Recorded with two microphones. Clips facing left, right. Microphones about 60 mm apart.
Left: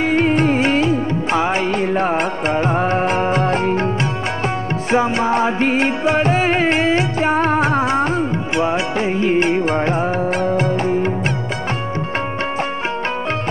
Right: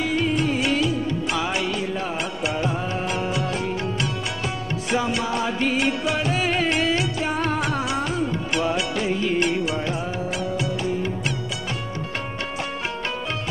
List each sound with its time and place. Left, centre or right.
0.0 s music: left